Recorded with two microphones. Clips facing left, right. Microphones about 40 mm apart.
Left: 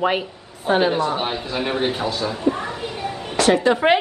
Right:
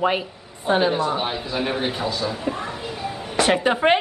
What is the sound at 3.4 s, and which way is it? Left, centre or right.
Speech, right.